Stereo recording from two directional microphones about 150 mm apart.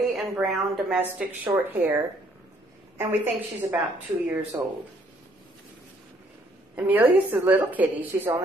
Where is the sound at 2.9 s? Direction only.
15° right (ahead or behind).